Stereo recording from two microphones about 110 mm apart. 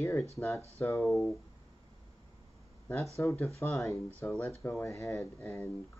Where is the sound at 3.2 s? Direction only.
25° left (ahead or behind).